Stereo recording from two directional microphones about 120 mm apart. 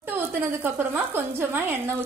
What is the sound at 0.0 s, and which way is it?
A woman's voice, 15° right (ahead or behind).